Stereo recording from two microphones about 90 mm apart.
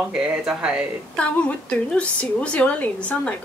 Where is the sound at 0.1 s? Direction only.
10° right (ahead or behind).